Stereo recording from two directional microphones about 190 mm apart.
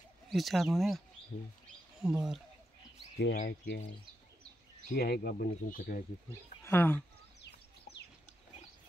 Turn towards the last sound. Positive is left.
turn(degrees=10)  # may be behind; listen again after turning